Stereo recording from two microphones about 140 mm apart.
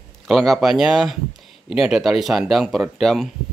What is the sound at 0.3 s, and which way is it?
Speech, centre (ahead or behind).